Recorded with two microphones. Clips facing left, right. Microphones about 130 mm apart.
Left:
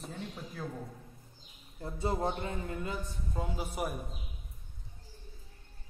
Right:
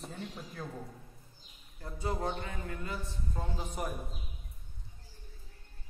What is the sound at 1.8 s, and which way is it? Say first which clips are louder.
A man's voice: left 3 dB; 25° left (ahead or behind).